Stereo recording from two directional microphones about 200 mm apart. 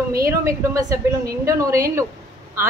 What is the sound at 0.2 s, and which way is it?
A woman's voice, 15° right (ahead or behind).